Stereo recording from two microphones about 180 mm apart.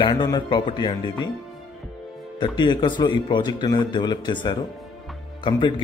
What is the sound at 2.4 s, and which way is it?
Speech, 25° left (ahead or behind).